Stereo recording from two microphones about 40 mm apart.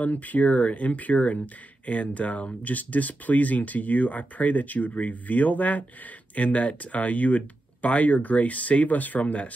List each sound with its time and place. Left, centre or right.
0.0 s speech: left